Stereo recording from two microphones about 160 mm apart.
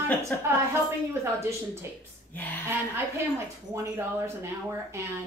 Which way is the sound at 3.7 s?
15° right (ahead or behind).